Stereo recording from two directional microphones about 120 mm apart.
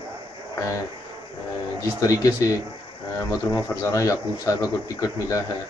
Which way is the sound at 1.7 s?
30° left (ahead or behind).